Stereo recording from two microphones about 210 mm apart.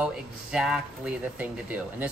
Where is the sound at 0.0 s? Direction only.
Centre (ahead or behind).